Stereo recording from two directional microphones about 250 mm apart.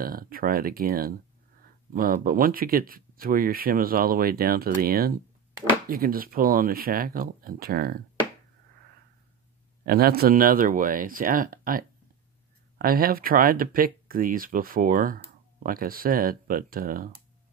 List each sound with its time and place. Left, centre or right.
0.0 s speech: right
9.8 s speech: right